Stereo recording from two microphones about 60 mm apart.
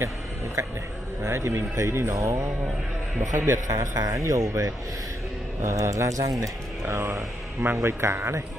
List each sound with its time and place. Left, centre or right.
0.6 s speech: right
1.2 s a man's voice: right